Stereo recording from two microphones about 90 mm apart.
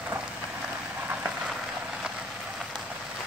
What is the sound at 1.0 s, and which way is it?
Vehicle, 10° right (ahead or behind).